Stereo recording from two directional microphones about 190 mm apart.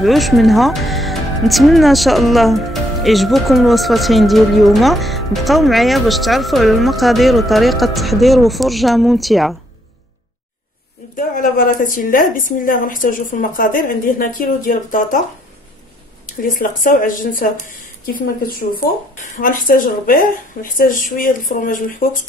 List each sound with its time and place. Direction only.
0.0 s speech: centre (ahead or behind)
11.1 s a woman's voice: 45° left (ahead or behind)
16.3 s a woman's voice: 45° left (ahead or behind)
19.3 s a woman's voice: 45° left (ahead or behind)